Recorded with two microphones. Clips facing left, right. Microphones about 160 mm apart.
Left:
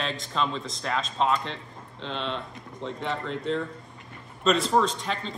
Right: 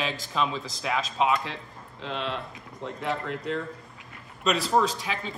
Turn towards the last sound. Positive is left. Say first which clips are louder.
# even
turn(degrees=-5)  # may be behind; listen again after turning